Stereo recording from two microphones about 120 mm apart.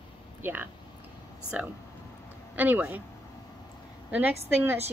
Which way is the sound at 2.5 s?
15° right (ahead or behind).